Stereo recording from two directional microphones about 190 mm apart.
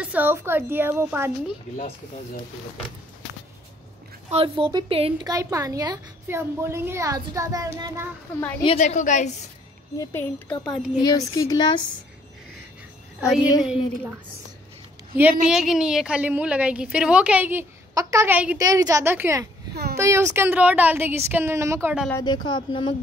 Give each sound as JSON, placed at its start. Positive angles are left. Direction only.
{"t": 0.0, "sound": "a woman's voice", "side_deg": -10}
{"t": 4.3, "sound": "a woman's voice", "side_deg": -30}
{"t": 5.3, "sound": "a woman's voice", "side_deg": -15}
{"t": 8.7, "sound": "a woman's voice", "side_deg": 40}
{"t": 9.9, "sound": "a woman's voice", "side_deg": 10}
{"t": 13.2, "sound": "a woman's voice", "side_deg": -5}
{"t": 15.5, "sound": "a woman's voice", "side_deg": -5}
{"t": 19.7, "sound": "a sound", "side_deg": -55}
{"t": 20.0, "sound": "a woman's voice", "side_deg": -15}
{"t": 22.1, "sound": "speech", "side_deg": 20}